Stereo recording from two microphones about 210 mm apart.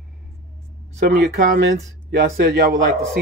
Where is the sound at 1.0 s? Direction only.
45° right (ahead or behind).